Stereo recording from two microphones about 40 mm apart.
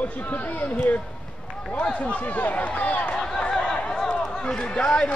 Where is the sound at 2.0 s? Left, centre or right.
Left.